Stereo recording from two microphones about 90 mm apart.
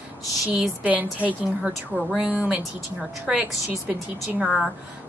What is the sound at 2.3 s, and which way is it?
Speech, 15° right (ahead or behind).